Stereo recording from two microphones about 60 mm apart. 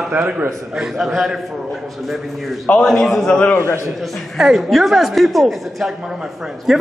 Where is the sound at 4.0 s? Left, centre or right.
Centre.